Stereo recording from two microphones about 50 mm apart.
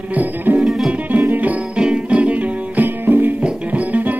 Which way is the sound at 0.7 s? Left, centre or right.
Centre.